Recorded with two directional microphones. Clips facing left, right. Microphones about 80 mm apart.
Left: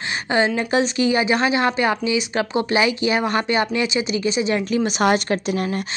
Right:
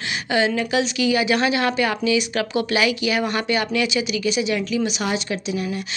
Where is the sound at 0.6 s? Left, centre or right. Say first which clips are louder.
Left 2 dB; left.